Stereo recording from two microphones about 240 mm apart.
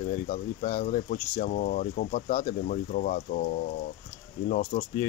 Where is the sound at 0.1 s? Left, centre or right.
Left.